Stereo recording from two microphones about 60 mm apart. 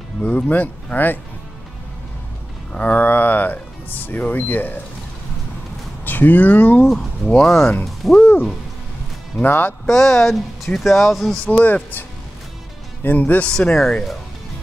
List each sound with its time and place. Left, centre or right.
0.2 s speech: left
2.8 s speech: left
6.0 s speech: left
6.9 s speech: centre
8.2 s speech: left
9.8 s speech: centre
11.4 s speech: left
13.0 s speech: left
13.5 s speech: centre